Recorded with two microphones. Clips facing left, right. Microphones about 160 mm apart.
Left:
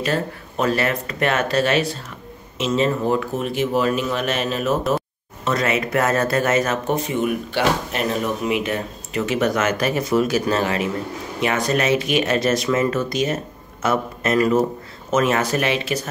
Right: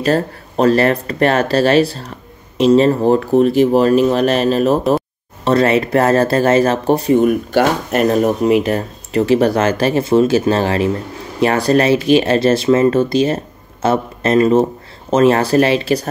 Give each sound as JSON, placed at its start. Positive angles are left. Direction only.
{"t": 0.0, "sound": "speech", "side_deg": -35}